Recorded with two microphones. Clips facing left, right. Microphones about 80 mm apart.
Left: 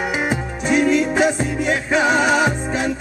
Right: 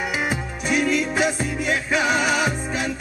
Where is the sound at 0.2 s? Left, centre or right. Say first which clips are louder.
Left 4 dB; left.